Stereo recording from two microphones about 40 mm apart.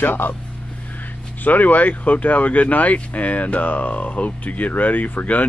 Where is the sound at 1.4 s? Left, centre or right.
Left.